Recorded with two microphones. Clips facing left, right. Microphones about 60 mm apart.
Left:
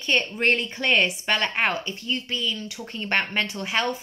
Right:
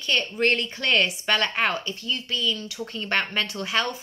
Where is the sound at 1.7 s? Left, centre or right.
Left.